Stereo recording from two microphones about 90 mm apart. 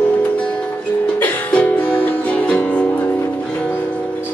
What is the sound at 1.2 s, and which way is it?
Music, 15° left (ahead or behind).